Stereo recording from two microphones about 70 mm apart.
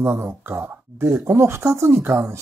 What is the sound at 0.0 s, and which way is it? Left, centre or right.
Speech, right.